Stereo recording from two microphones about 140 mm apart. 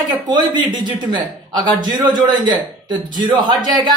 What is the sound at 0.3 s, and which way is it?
Speech, 30° right (ahead or behind).